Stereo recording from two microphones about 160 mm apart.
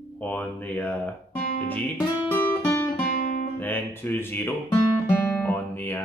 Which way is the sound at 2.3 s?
15° left (ahead or behind).